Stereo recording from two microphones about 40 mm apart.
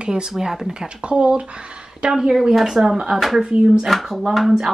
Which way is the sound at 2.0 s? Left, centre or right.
Centre.